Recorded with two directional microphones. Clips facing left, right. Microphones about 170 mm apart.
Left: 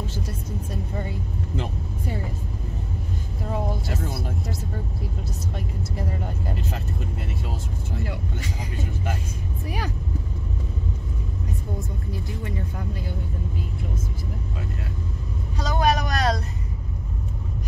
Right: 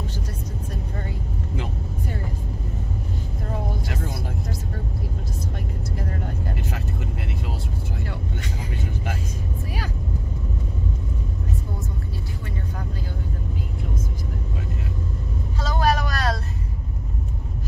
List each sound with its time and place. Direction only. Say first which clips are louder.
15.6 s vehicle: even; 20° left (ahead or behind)